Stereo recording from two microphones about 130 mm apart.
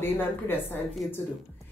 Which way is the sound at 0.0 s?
15° left (ahead or behind).